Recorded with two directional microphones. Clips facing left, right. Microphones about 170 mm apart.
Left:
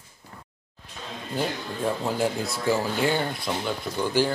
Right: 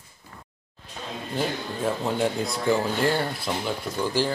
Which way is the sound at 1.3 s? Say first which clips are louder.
Even; centre (ahead or behind).